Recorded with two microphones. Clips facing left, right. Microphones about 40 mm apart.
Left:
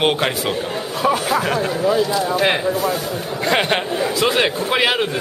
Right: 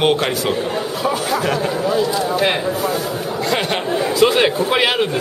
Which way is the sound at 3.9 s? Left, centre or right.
Centre.